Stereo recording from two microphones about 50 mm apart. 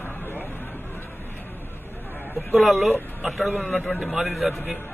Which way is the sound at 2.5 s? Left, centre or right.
Centre.